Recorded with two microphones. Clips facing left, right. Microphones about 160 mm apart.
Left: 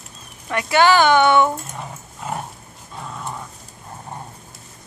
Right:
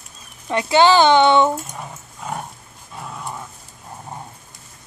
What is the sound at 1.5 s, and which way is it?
Dog, centre (ahead or behind).